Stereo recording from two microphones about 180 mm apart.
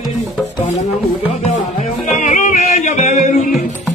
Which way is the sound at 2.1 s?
40° left (ahead or behind).